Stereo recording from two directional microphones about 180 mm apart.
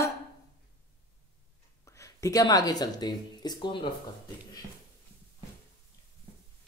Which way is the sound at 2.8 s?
20° left (ahead or behind).